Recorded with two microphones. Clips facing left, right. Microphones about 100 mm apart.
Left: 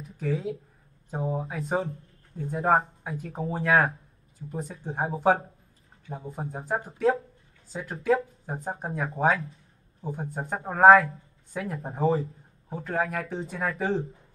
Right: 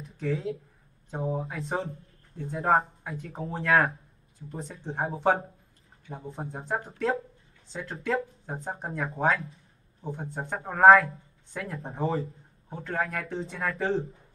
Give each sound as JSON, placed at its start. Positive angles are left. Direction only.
{"t": 0.0, "sound": "speech", "side_deg": 0}